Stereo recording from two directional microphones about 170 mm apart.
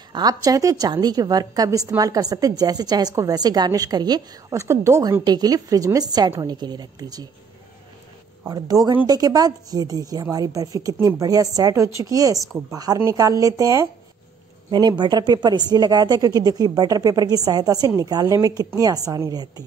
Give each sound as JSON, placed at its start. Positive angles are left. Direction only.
{"t": 0.1, "sound": "a woman's voice", "side_deg": -20}
{"t": 8.5, "sound": "a woman's voice", "side_deg": -20}